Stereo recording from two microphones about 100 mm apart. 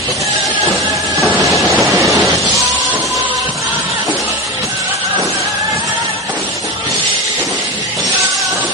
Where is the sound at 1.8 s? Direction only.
30° right (ahead or behind).